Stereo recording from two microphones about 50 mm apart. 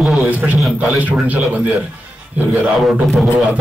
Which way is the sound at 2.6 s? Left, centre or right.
Centre.